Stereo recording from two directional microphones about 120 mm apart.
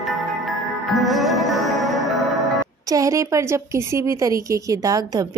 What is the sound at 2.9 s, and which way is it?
Speech, 25° right (ahead or behind).